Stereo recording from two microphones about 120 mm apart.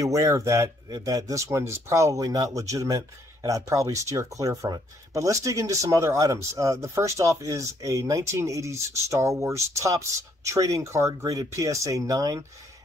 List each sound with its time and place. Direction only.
0.0 s speech: 25° right (ahead or behind)